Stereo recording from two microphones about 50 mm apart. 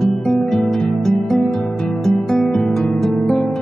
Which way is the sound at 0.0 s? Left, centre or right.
Centre.